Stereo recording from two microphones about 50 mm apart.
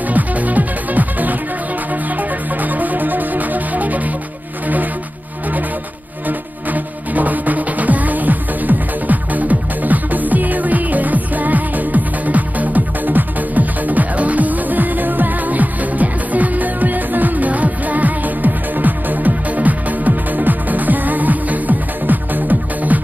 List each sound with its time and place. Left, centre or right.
0.1 s music: right
2.6 s music: right
6.2 s music: right